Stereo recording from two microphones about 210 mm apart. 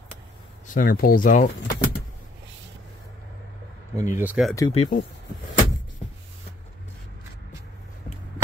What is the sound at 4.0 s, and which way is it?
Speech, 10° right (ahead or behind).